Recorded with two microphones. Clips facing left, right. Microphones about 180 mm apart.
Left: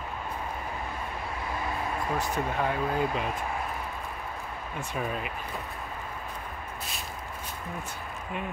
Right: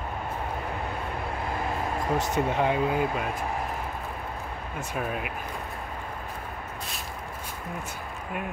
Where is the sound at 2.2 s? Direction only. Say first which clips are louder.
Right 5 dB; 25° right (ahead or behind).